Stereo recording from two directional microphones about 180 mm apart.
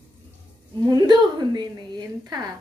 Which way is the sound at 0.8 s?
25° right (ahead or behind).